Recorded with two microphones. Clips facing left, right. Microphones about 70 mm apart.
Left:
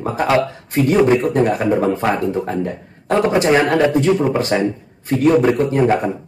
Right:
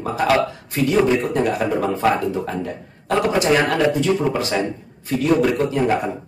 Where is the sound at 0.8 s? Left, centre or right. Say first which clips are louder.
Left 3 dB; left.